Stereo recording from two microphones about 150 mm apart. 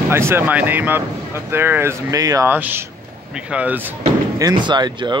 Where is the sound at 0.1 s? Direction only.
15° right (ahead or behind).